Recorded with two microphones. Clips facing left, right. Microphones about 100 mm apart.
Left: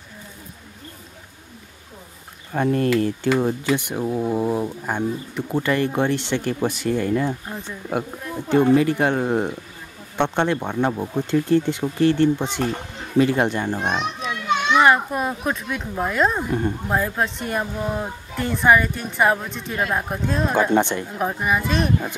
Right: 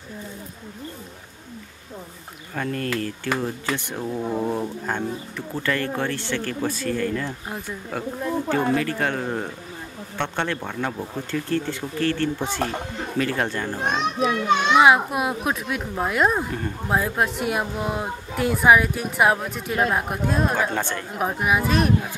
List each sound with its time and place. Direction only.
2.5 s speech: 25° left (ahead or behind)
14.7 s speech: 5° right (ahead or behind)
20.7 s speech: 20° left (ahead or behind)
21.2 s speech: 5° right (ahead or behind)